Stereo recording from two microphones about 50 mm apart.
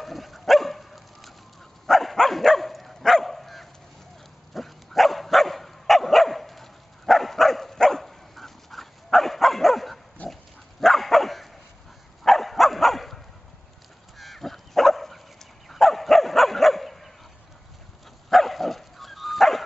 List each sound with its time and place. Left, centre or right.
0.0 s dog: centre
10.2 s pig: left
10.8 s dog: centre
18.3 s dog: centre